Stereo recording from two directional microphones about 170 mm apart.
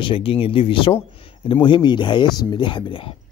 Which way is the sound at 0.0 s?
30° left (ahead or behind).